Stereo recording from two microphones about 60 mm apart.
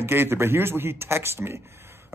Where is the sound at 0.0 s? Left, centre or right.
Right.